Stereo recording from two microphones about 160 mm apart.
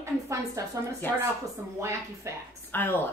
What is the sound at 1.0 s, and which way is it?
Speech, 15° left (ahead or behind).